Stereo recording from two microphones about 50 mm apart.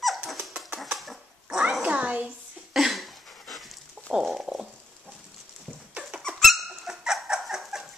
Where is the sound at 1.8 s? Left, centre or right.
Right.